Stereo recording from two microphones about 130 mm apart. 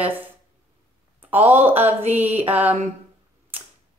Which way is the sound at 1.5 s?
15° right (ahead or behind).